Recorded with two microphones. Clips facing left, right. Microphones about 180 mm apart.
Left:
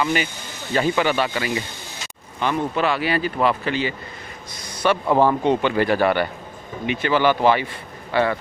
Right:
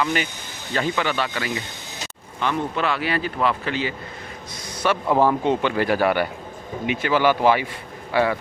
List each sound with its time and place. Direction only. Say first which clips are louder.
0.0 s speech: left 2 dB; 5° left (ahead or behind)